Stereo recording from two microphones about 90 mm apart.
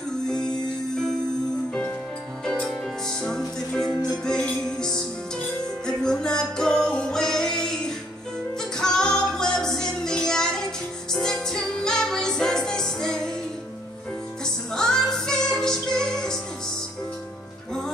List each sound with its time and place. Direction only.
2.4 s music: 10° left (ahead or behind)
14.4 s music: 5° left (ahead or behind)